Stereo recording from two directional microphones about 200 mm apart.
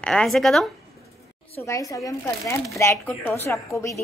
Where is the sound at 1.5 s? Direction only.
15° left (ahead or behind).